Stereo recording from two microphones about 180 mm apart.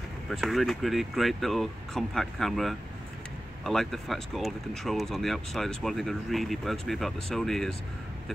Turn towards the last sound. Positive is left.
turn(degrees=0)  # may be behind; listen again after turning